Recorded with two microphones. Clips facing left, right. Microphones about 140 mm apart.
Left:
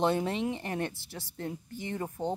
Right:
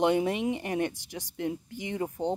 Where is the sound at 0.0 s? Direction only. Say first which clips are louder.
Right 3 dB; 15° right (ahead or behind).